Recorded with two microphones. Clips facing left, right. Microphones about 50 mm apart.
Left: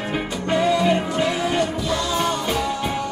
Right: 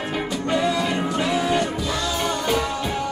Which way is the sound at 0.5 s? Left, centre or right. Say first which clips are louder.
Left 4 dB; left.